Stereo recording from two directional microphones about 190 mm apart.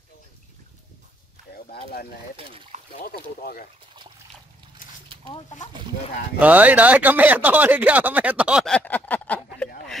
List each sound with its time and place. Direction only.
2.3 s speech: 30° right (ahead or behind)
2.9 s speech: 55° left (ahead or behind)
6.4 s speech: 10° right (ahead or behind); by 9.4 s 10° left (ahead or behind)